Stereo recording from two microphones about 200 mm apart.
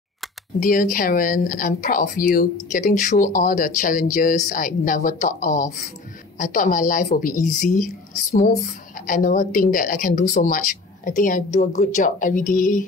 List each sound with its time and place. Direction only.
0.6 s speech: 45° left (ahead or behind)